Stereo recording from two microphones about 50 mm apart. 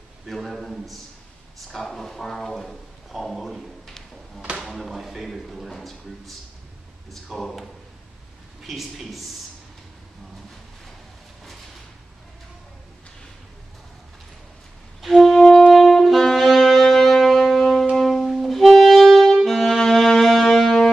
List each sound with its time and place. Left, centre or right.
0.3 s a man's voice: centre
15.0 s music: centre
15.7 s saxophone: centre